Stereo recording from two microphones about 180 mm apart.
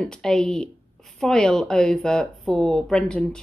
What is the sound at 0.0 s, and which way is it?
Speech, 5° left (ahead or behind).